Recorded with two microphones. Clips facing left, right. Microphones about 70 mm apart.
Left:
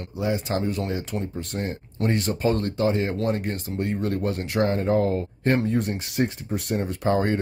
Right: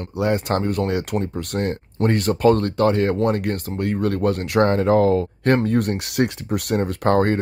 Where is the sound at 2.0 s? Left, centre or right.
Right.